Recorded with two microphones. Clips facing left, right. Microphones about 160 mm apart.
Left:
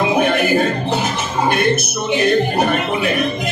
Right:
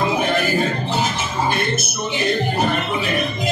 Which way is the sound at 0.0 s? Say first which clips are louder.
Left 4 dB; 60° left (ahead or behind).